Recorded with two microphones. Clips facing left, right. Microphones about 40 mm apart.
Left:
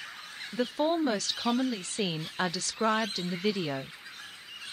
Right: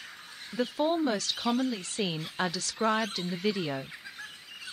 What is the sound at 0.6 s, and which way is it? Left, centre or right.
Speech, centre.